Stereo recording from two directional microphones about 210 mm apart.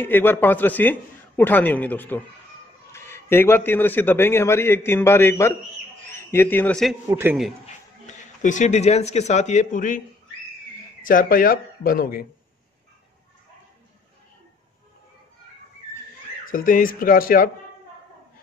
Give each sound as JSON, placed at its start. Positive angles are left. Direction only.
{"t": 0.0, "sound": "a man's voice", "side_deg": 10}
{"t": 7.1, "sound": "a man's voice", "side_deg": -10}
{"t": 7.6, "sound": "speech", "side_deg": 35}
{"t": 16.4, "sound": "speech", "side_deg": 40}